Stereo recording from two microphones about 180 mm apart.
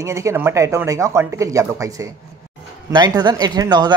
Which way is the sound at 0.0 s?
15° right (ahead or behind).